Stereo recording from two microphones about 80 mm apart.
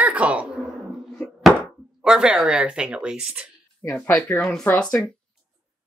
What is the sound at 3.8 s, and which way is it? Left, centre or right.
Speech, left.